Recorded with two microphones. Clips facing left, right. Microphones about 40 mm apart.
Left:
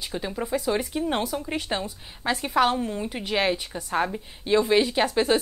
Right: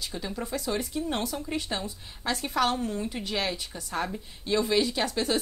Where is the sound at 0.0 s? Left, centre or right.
Left.